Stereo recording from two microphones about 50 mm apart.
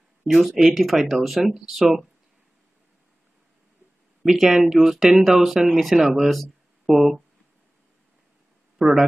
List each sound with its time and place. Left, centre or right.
0.3 s speech: centre
4.2 s speech: centre
8.7 s speech: centre